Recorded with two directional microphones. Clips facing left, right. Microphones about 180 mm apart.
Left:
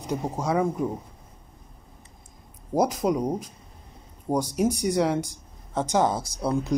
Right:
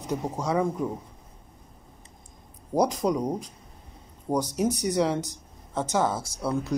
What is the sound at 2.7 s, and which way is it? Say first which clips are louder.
Speech: left 1 dB; 5° left (ahead or behind).